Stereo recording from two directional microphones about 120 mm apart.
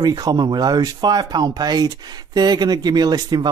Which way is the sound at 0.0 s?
35° right (ahead or behind).